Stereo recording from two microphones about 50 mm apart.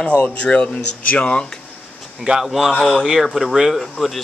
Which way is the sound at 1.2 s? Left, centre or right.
Centre.